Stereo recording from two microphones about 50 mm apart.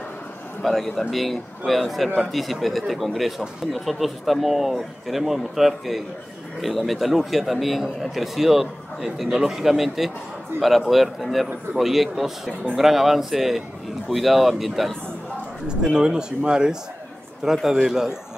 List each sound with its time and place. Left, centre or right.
0.7 s speech: centre
15.8 s speech: centre